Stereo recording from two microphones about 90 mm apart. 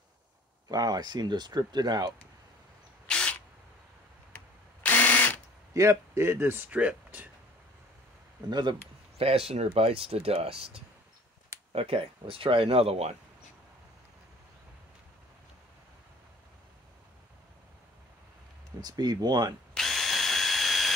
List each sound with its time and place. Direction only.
0.7 s speech: 45° right (ahead or behind)
3.1 s a sound: 10° left (ahead or behind)
4.8 s drill: 20° left (ahead or behind)
5.7 s a man's voice: 35° right (ahead or behind); by 7.2 s 15° right (ahead or behind)
8.5 s speech: 55° right (ahead or behind)
9.5 s speech: 90° right
11.8 s speech: 90° right
18.8 s speech: 50° right (ahead or behind)
19.7 s drill: 5° left (ahead or behind)